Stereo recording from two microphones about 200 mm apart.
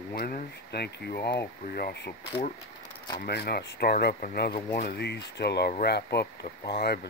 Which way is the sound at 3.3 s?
55° left (ahead or behind).